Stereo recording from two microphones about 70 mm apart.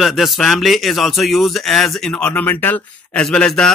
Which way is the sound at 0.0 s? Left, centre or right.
Centre.